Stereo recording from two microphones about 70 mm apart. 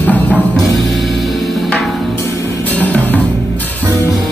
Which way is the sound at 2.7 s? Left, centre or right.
Left.